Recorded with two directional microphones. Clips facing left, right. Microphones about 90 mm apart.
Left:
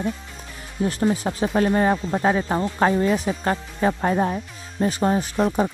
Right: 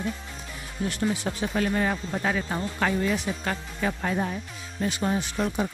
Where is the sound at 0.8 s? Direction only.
35° left (ahead or behind).